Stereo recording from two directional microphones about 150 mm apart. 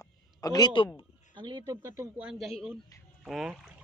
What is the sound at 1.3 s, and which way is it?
Speech, 30° right (ahead or behind).